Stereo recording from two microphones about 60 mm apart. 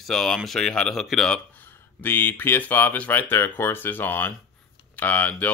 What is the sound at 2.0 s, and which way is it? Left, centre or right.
Speech, left.